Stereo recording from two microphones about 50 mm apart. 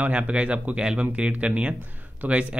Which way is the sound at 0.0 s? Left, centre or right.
Right.